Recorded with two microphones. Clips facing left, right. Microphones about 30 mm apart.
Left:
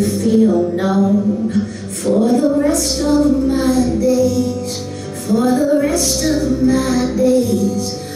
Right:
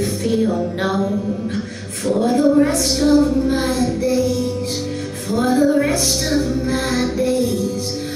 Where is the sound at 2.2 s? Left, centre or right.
Right.